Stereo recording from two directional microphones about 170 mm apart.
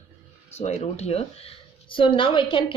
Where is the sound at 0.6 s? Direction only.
40° left (ahead or behind).